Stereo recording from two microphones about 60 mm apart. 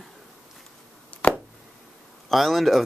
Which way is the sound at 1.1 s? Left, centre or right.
Left.